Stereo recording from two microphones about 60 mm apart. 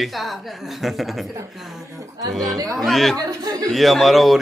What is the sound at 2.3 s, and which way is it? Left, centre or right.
Speech, centre.